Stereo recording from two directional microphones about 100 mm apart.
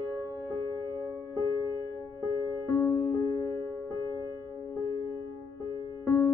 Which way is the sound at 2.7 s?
30° left (ahead or behind).